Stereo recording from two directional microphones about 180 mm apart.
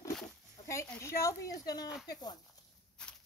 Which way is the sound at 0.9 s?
15° left (ahead or behind).